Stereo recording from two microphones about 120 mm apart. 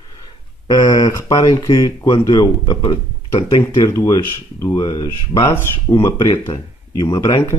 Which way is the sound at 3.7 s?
25° left (ahead or behind).